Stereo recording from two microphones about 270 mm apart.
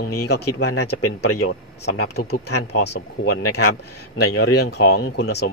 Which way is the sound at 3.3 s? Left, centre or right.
Left.